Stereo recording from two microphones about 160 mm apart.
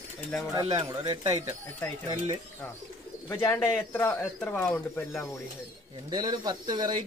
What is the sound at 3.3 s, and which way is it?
Speech, 20° left (ahead or behind).